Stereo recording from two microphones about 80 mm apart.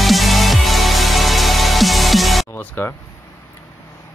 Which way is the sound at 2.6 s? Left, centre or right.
Left.